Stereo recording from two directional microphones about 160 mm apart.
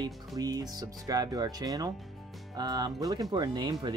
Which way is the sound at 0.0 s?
25° right (ahead or behind).